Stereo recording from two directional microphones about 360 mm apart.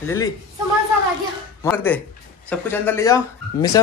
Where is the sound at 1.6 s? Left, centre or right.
Centre.